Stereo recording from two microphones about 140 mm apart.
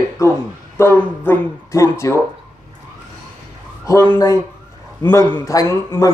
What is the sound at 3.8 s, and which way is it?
A man's voice, 20° left (ahead or behind).